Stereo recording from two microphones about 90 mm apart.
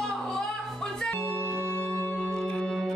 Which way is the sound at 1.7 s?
20° left (ahead or behind).